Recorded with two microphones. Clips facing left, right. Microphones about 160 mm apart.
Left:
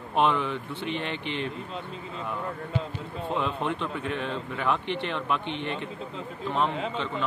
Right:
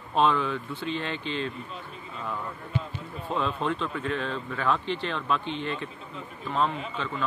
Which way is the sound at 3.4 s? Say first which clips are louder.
Right 2 dB; 20° left (ahead or behind).